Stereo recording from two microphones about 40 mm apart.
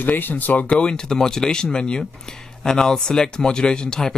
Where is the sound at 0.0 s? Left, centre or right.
Left.